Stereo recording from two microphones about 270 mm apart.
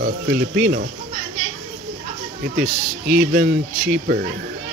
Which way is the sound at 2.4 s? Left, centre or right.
Right.